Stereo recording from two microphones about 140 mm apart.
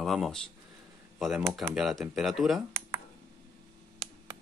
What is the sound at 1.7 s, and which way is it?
Speech, centre (ahead or behind).